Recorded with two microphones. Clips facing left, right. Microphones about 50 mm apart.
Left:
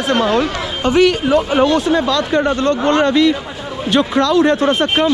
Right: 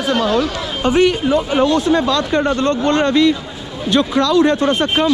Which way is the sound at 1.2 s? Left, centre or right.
Left.